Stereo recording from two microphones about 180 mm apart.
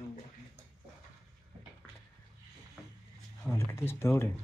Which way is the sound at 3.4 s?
15° left (ahead or behind).